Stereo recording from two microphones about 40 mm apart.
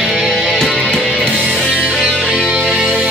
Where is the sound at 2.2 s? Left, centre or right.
Right.